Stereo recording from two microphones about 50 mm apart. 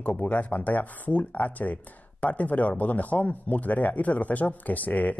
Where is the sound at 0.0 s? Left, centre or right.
Left.